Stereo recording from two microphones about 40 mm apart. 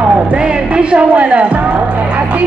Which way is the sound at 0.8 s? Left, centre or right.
Right.